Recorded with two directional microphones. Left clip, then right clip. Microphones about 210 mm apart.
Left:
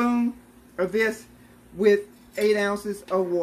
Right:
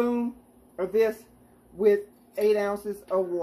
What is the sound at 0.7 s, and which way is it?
Speech, 25° left (ahead or behind).